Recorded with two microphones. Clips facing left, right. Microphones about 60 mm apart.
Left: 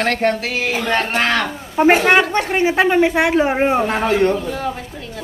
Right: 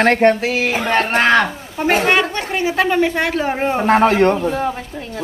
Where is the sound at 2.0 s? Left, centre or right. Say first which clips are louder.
Left 2 dB; left.